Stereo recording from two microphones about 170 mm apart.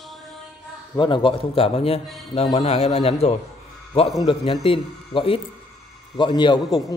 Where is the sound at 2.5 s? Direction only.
40° left (ahead or behind).